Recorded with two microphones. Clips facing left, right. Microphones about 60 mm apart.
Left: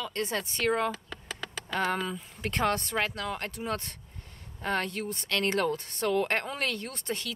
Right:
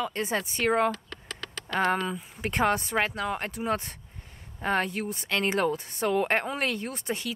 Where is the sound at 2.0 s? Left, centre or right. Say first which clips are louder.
Right 3 dB; centre.